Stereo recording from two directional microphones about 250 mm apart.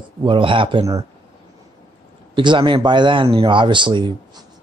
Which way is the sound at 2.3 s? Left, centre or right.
Centre.